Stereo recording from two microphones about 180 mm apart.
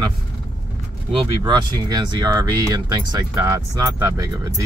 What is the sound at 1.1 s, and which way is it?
Speech, 25° right (ahead or behind).